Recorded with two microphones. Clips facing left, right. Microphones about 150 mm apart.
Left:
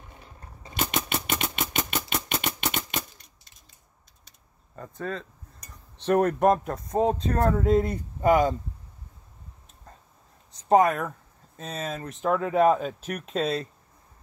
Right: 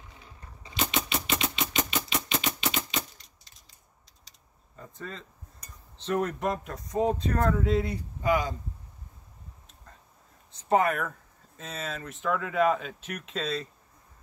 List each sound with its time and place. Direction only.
0.1 s typewriter: 50° left (ahead or behind)
4.7 s speech: 55° left (ahead or behind)
10.7 s speech: 35° left (ahead or behind)